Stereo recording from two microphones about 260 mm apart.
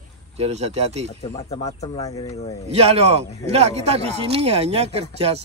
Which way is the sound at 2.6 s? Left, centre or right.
Right.